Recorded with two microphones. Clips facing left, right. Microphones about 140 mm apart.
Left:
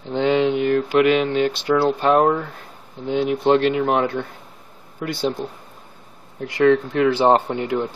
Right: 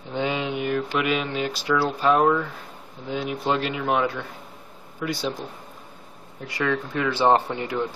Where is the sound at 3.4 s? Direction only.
45° left (ahead or behind).